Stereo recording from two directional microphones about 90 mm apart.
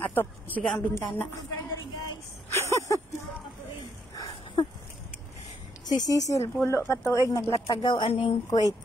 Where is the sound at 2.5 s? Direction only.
35° left (ahead or behind).